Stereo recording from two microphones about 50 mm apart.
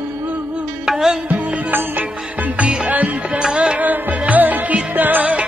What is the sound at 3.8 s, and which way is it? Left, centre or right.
Music, right.